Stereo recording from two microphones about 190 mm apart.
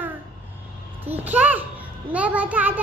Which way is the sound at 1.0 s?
10° right (ahead or behind).